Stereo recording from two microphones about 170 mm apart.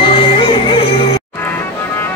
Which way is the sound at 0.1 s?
30° left (ahead or behind).